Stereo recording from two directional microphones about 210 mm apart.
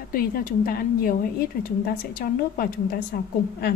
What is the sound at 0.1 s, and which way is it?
A woman's voice, 45° left (ahead or behind).